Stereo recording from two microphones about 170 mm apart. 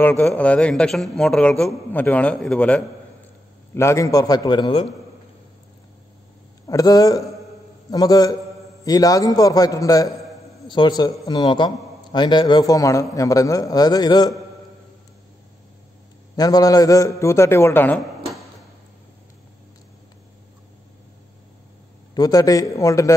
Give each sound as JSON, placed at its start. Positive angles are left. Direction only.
{"t": 0.0, "sound": "a man's voice", "side_deg": 5}
{"t": 6.7, "sound": "a man's voice", "side_deg": 20}
{"t": 16.3, "sound": "a man's voice", "side_deg": 20}
{"t": 22.1, "sound": "a man's voice", "side_deg": 20}